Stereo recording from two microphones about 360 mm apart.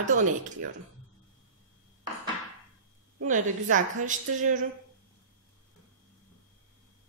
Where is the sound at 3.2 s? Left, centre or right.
Right.